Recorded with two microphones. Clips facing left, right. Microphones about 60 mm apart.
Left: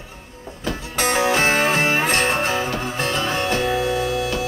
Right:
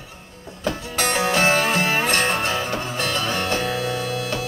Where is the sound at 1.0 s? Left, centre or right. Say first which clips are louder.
Left 2 dB; centre.